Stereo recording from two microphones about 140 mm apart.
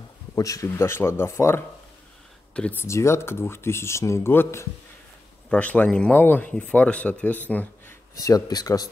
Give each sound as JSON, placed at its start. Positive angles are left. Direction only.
{"t": 0.4, "sound": "speech", "side_deg": 25}
{"t": 8.2, "sound": "speech", "side_deg": 25}